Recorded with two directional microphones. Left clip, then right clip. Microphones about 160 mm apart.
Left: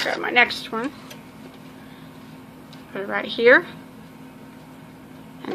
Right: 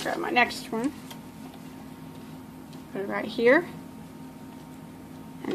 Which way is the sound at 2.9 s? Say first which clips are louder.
Left 5 dB; 5° right (ahead or behind).